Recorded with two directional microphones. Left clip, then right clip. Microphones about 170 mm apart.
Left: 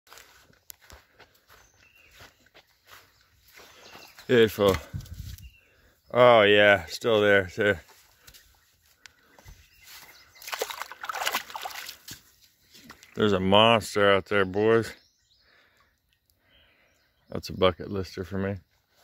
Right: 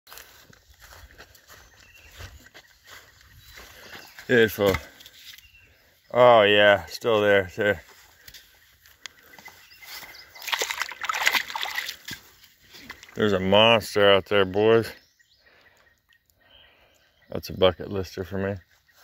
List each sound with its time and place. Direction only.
0.1 s biting: 70° right (ahead or behind)
4.3 s speech: 25° left (ahead or behind)
6.0 s speech: 35° left (ahead or behind)
10.7 s splash: 5° right (ahead or behind)
11.2 s boat: 25° left (ahead or behind)
11.6 s splash: 15° left (ahead or behind)
13.1 s speech: 25° left (ahead or behind)
17.3 s speech: 20° left (ahead or behind)